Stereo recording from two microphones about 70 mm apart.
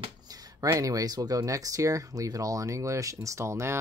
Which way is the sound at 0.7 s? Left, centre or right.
Right.